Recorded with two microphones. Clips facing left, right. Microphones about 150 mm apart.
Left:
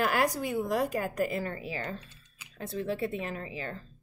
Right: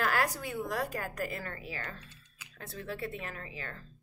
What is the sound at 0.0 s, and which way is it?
A woman's voice, 15° left (ahead or behind).